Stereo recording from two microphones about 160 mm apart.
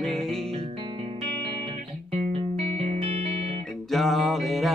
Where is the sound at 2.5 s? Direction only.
40° right (ahead or behind).